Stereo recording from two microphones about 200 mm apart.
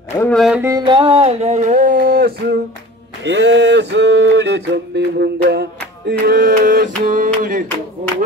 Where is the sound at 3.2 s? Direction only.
60° right (ahead or behind); by 7.6 s 40° right (ahead or behind).